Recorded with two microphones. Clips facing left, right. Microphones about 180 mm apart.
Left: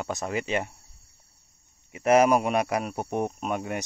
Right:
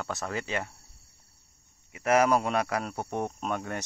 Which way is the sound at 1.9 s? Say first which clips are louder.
Left 4 dB; 20° left (ahead or behind).